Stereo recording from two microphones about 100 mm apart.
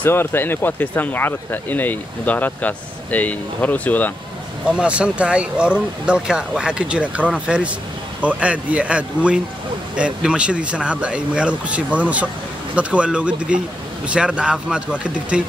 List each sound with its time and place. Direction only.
0.0 s speech: 25° left (ahead or behind)
4.6 s speech: 10° right (ahead or behind)